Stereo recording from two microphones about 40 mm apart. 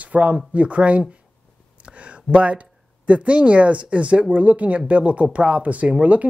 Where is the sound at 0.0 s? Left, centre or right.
Right.